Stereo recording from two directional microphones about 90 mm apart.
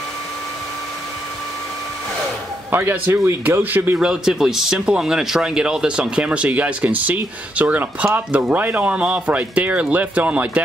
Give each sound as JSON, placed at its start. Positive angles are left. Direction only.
{"t": 2.7, "sound": "speech", "side_deg": -20}
{"t": 4.0, "sound": "speech", "side_deg": -5}